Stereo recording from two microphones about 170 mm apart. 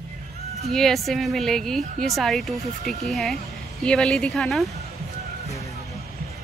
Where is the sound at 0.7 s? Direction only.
Centre (ahead or behind).